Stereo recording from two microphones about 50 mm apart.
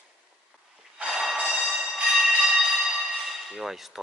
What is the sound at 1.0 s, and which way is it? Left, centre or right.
Train, centre.